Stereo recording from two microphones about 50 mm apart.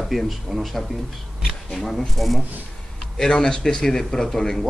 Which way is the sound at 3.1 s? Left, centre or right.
Centre.